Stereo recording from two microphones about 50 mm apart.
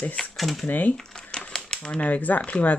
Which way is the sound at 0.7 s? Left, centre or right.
Left.